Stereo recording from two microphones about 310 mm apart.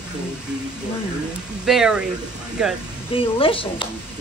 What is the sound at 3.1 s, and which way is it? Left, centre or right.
Speech, centre.